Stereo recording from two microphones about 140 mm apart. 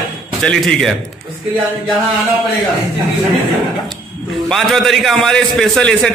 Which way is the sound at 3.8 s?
Centre (ahead or behind).